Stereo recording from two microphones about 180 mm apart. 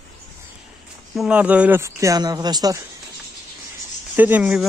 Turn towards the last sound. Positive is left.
turn(degrees=-5)  # may be behind; listen again after turning